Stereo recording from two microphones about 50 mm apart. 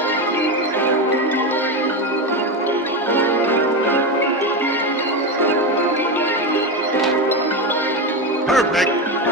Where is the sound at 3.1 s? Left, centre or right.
Left.